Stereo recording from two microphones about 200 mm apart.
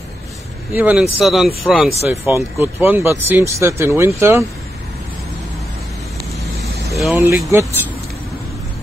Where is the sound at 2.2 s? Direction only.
10° right (ahead or behind).